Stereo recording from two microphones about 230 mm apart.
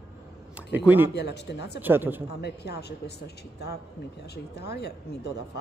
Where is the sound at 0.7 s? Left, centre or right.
Centre.